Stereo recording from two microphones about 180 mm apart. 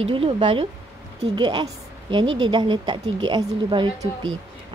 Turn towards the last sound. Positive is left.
turn(degrees=-25)  # may be behind; listen again after turning